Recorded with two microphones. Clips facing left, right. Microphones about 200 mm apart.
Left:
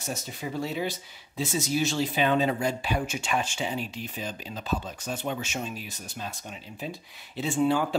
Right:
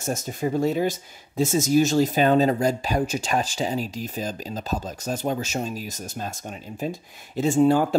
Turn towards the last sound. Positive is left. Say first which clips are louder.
# right 6 dB
turn(degrees=-45)  # may be behind; listen again after turning